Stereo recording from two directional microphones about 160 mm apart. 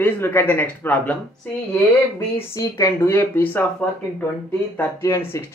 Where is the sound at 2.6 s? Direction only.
20° left (ahead or behind).